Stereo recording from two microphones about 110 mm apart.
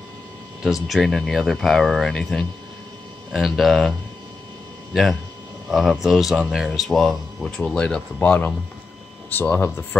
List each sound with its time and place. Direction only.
0.8 s speech: centre (ahead or behind)
5.7 s speech: 5° right (ahead or behind); by 9.8 s 20° left (ahead or behind)